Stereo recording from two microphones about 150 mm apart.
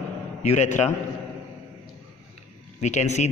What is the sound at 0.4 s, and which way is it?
Speech, 50° left (ahead or behind).